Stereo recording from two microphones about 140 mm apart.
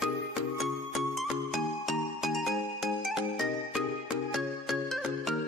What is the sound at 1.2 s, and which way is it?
Music, centre (ahead or behind).